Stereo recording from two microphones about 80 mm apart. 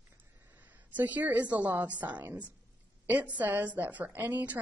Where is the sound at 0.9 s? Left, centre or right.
Centre.